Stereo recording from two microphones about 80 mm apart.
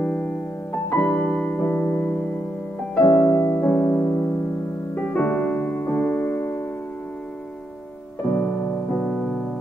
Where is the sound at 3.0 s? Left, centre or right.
Left.